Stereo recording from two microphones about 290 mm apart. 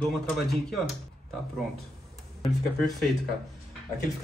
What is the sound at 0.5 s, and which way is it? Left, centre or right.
Speech, centre.